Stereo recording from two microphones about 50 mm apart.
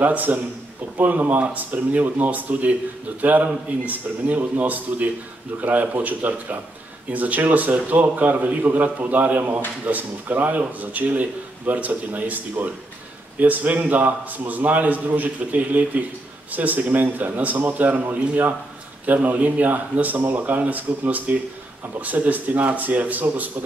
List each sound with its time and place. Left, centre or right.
0.0 s speech: right